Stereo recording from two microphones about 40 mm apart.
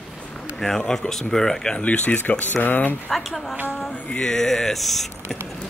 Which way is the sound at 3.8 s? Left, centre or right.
Left.